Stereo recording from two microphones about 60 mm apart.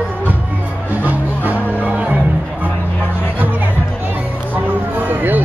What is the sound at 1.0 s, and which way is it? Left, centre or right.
Music, right.